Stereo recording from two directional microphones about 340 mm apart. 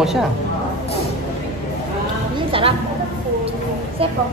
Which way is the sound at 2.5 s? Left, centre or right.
Centre.